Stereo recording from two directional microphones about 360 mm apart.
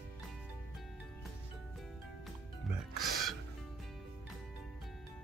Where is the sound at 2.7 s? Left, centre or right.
Centre.